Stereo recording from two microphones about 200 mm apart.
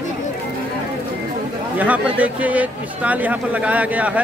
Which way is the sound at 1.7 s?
5° right (ahead or behind).